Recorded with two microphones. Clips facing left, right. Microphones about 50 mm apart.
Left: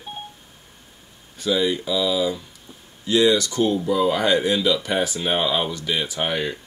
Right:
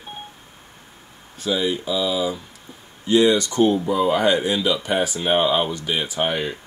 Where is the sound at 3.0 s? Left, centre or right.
Right.